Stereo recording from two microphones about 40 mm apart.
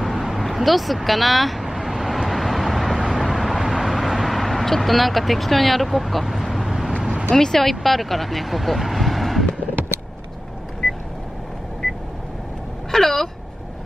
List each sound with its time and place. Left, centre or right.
0.0 s vehicle: centre
7.0 s vehicle: centre
7.3 s speech: centre
10.8 s vehicle: centre
12.9 s a sound: centre